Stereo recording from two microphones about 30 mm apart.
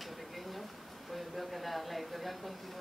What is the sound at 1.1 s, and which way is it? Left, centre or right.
Speech, centre.